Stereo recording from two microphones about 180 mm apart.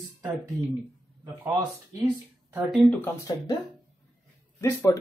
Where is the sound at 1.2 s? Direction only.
20° right (ahead or behind).